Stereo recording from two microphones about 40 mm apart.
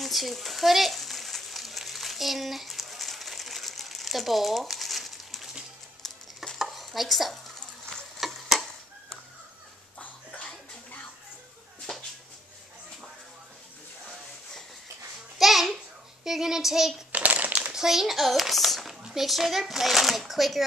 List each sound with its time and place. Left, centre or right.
0.0 s a sound: centre
6.0 s stir: centre
6.6 s stir: centre
8.2 s tick-tock: centre
9.9 s cough: left
11.9 s a sound: centre
15.3 s babbling: centre
16.3 s speech: centre
17.1 s crumpling: right
17.7 s a child's voice: centre